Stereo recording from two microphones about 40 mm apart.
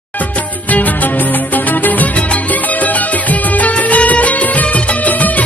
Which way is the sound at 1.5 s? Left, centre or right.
Left.